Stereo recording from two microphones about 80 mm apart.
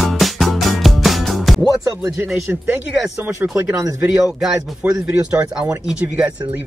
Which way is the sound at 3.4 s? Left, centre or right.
Right.